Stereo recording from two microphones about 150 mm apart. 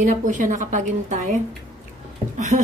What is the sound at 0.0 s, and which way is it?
A woman's voice, 60° right (ahead or behind).